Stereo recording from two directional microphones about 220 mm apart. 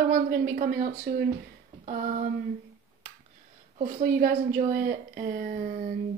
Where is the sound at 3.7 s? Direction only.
35° right (ahead or behind).